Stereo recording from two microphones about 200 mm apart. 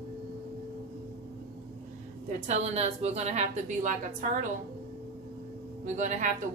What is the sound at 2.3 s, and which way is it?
A woman's voice, 35° right (ahead or behind).